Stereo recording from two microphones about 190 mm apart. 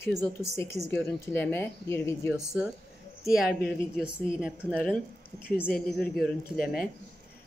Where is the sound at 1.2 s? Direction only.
10° left (ahead or behind).